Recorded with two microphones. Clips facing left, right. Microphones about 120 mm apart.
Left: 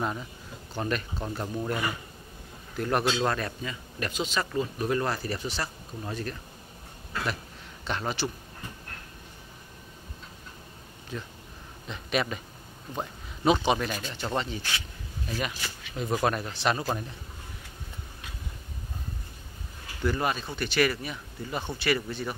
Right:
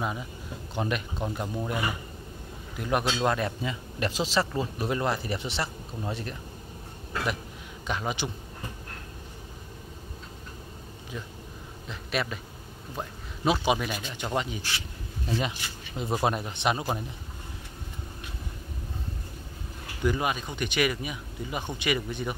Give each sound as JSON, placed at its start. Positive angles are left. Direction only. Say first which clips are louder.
{"t": 0.7, "sound": "speech", "louder": "right 1 dB", "side_deg": -15}
{"t": 2.8, "sound": "speech", "louder": "even", "side_deg": -10}
{"t": 7.8, "sound": "speech", "louder": "even", "side_deg": -10}
{"t": 11.9, "sound": "speech", "louder": "left 2 dB", "side_deg": 0}
{"t": 12.9, "sound": "a sound", "louder": "left 2 dB", "side_deg": 5}
{"t": 13.7, "sound": "speech", "louder": "even", "side_deg": -5}
{"t": 15.2, "sound": "speech", "louder": "right 3 dB", "side_deg": -25}
{"t": 20.0, "sound": "speech", "louder": "right 1 dB", "side_deg": -15}